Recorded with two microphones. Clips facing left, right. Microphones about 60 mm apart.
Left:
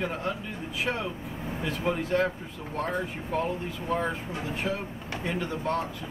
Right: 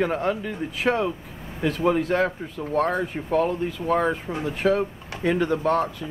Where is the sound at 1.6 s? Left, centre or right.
Right.